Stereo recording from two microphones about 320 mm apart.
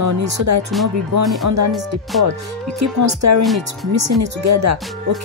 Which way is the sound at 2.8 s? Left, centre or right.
Right.